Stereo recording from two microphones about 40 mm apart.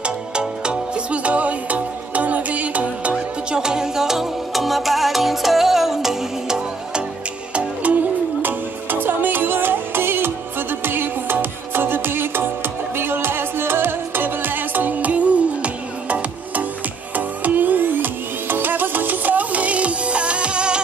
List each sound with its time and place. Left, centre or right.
0.0 s music: right
3.5 s music: centre
7.5 s music: right